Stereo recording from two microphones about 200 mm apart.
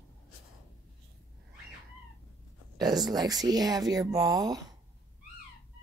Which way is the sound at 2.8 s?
20° right (ahead or behind).